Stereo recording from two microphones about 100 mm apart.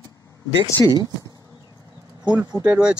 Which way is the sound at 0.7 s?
25° left (ahead or behind).